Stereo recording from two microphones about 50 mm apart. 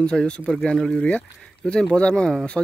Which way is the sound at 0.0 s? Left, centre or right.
Centre.